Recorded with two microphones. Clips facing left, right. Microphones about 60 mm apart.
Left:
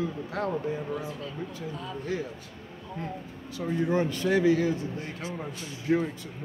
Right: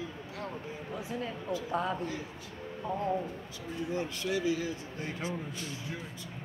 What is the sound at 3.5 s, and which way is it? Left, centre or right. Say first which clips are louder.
Speech: left 9 dB; left.